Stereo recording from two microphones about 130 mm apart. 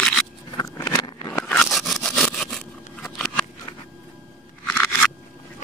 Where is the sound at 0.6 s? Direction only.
30° left (ahead or behind).